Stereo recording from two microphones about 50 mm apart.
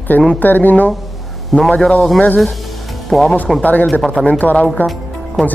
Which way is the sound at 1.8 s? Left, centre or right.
Centre.